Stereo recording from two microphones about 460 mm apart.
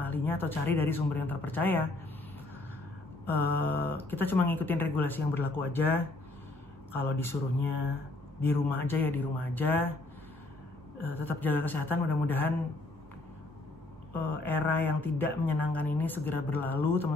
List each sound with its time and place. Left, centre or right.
0.0 s speech: centre
3.3 s speech: centre
11.0 s speech: centre
14.1 s speech: centre